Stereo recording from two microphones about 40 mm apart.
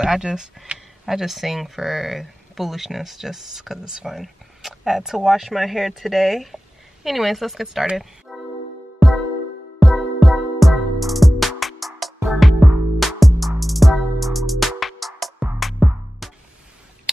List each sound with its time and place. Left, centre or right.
0.0 s speech: centre
8.3 s music: centre
9.8 s music: centre